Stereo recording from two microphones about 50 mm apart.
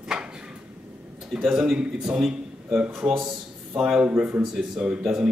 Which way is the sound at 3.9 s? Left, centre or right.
Right.